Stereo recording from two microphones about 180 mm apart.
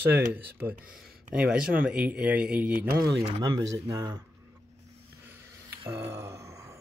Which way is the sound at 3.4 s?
20° right (ahead or behind).